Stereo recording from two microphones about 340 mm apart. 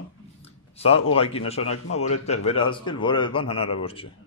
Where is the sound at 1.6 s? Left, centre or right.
Left.